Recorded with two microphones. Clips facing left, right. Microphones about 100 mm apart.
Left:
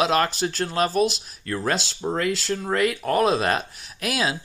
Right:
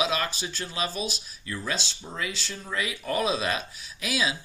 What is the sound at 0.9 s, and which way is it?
Speech, 80° left.